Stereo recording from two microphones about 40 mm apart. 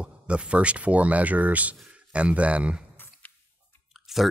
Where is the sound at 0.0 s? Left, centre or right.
Right.